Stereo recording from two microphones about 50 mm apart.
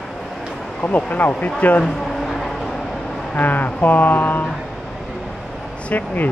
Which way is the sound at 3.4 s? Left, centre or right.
Left.